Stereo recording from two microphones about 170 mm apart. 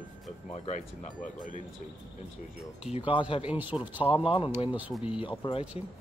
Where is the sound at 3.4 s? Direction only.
10° right (ahead or behind).